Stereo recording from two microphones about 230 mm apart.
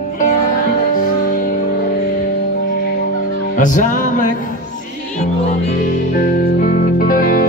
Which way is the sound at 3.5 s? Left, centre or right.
Left.